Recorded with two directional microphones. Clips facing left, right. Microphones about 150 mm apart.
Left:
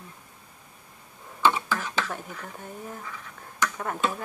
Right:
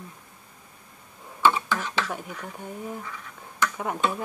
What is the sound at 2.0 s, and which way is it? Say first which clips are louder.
Speech: right 2 dB; 10° right (ahead or behind).